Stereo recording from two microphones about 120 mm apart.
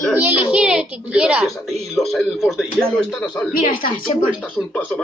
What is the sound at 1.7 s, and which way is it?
A man's voice, centre (ahead or behind).